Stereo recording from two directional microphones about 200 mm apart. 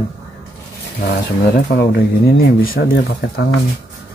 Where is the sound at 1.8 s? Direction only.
50° left (ahead or behind).